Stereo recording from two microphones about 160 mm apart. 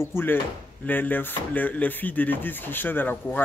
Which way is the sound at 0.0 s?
15° left (ahead or behind).